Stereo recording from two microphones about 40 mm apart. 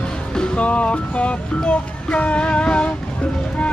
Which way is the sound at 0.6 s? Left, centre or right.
Left.